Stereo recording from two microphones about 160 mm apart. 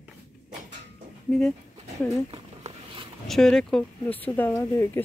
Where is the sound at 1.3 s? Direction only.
Centre (ahead or behind).